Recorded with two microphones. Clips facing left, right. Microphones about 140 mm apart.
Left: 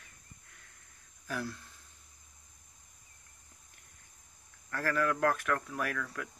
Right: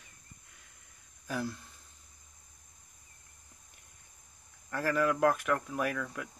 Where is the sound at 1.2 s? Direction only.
15° right (ahead or behind).